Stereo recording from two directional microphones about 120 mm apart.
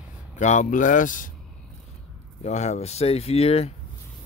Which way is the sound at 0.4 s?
85° left.